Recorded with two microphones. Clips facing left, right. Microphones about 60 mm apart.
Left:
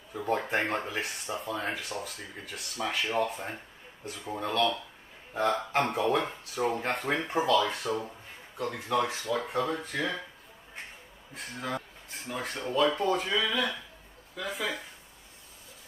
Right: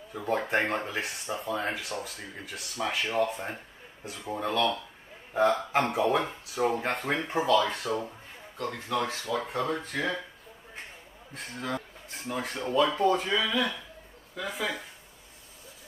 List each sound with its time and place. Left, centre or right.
0.1 s speech: centre
9.2 s speech: centre
11.3 s speech: centre